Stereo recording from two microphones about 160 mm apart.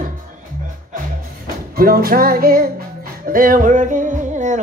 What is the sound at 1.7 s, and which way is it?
Music, 65° right (ahead or behind).